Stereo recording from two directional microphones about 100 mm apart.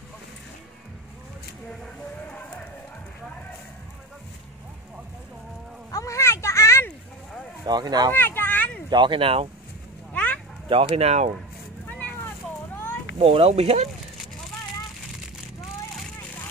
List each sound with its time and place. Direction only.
2.2 s a sound: 15° left (ahead or behind)
5.9 s a sound: 30° left (ahead or behind)
7.6 s speech: 45° right (ahead or behind)
8.1 s children playing: 20° left (ahead or behind)
8.9 s speech: 50° right (ahead or behind)
9.2 s speech: 75° right (ahead or behind)
10.1 s a sound: 15° left (ahead or behind)
10.7 s speech: 80° right
11.9 s vehicle: 15° left (ahead or behind)
13.2 s speech: 75° right (ahead or behind); by 13.8 s 90° right